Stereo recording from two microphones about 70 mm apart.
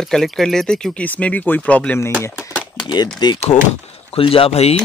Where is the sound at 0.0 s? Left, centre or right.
Centre.